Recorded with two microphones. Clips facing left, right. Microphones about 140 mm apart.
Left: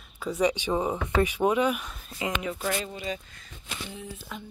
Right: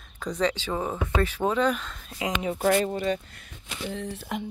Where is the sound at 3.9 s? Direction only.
75° right (ahead or behind).